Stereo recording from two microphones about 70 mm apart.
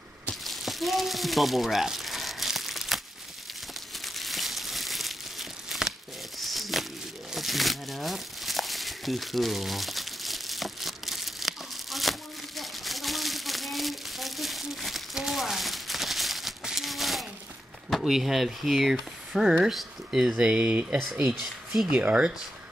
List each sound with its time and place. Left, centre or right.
0.3 s a sound: centre
4.0 s crumpling: centre
17.8 s speech: centre